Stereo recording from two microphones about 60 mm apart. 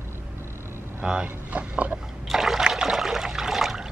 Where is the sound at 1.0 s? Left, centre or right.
Centre.